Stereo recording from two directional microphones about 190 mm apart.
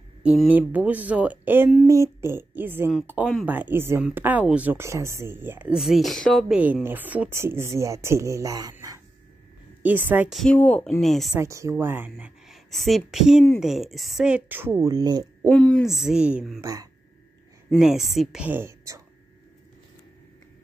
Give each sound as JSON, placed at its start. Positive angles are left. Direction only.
{"t": 0.2, "sound": "speech", "side_deg": -5}
{"t": 6.6, "sound": "a woman's voice", "side_deg": -10}
{"t": 11.3, "sound": "speech", "side_deg": -15}
{"t": 12.2, "sound": "a woman's voice", "side_deg": 0}
{"t": 15.4, "sound": "a woman's voice", "side_deg": 5}
{"t": 16.6, "sound": "speech", "side_deg": -20}
{"t": 17.6, "sound": "a woman's voice", "side_deg": 0}